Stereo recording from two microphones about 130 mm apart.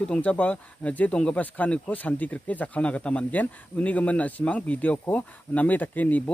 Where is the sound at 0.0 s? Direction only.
10° left (ahead or behind).